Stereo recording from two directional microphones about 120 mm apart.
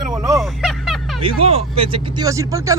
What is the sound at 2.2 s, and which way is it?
Speech, 25° right (ahead or behind).